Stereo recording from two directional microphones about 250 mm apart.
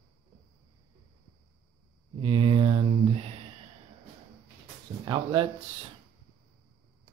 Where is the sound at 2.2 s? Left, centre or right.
Right.